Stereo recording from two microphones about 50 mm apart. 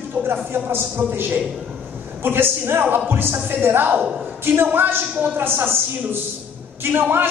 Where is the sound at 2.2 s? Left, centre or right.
Right.